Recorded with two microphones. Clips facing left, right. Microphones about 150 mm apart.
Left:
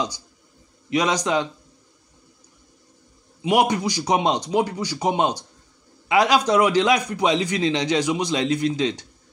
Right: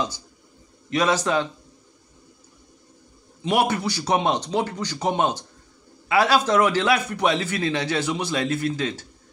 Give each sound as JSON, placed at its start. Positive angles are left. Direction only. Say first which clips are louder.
{"t": 0.8, "sound": "a man's voice", "louder": "even", "side_deg": 15}
{"t": 3.4, "sound": "a man's voice", "louder": "left 2 dB", "side_deg": 15}